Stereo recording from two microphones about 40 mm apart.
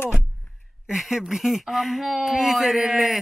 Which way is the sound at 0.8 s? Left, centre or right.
Centre.